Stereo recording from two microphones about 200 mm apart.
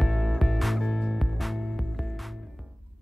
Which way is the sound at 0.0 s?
Centre (ahead or behind).